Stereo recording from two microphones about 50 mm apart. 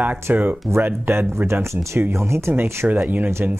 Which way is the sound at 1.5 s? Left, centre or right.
Right.